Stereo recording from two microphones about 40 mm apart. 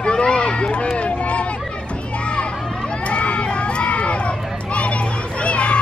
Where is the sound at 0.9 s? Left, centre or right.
Left.